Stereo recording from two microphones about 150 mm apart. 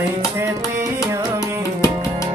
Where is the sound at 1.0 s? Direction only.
20° right (ahead or behind).